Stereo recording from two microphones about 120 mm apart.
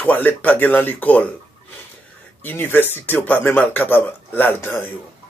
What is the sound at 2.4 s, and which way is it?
A man's voice, 15° left (ahead or behind).